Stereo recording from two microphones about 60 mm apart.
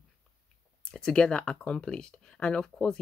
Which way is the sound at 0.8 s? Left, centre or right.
Centre.